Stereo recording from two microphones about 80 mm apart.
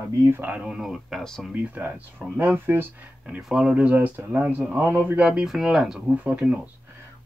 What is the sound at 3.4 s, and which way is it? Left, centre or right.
Speech, centre.